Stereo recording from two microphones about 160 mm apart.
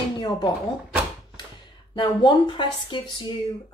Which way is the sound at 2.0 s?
30° left (ahead or behind).